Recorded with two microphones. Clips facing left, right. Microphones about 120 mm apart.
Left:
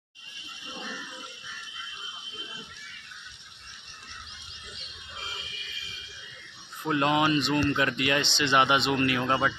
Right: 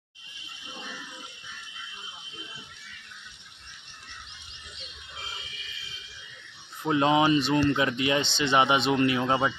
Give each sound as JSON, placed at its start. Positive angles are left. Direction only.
{"t": 6.8, "sound": "speech", "side_deg": -20}